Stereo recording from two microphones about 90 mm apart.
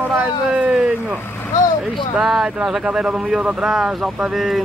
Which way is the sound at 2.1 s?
5° right (ahead or behind).